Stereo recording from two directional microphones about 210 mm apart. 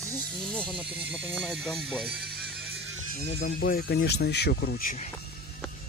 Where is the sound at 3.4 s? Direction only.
45° left (ahead or behind).